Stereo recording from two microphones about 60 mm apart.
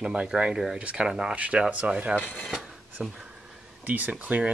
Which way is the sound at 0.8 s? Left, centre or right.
Centre.